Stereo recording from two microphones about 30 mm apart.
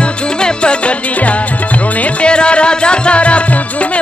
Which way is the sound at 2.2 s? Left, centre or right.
Left.